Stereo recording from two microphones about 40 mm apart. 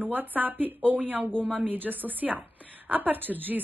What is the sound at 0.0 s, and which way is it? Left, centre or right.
A woman's voice, right.